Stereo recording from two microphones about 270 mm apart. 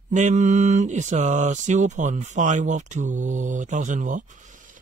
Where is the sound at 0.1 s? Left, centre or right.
Right.